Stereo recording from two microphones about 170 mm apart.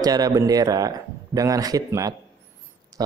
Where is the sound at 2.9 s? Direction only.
20° right (ahead or behind).